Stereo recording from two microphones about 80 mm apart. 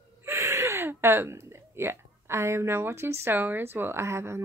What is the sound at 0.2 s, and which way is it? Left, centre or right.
Speech, right.